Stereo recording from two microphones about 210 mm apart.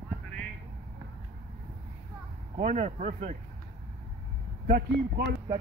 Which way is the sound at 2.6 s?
35° right (ahead or behind).